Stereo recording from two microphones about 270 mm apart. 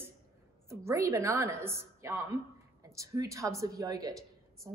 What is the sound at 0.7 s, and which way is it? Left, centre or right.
A woman's voice, centre.